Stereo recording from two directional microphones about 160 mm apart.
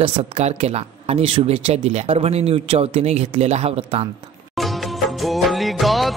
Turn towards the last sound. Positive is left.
turn(degrees=0)  # may be behind; listen again after turning